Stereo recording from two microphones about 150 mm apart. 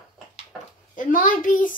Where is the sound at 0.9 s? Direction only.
60° left (ahead or behind).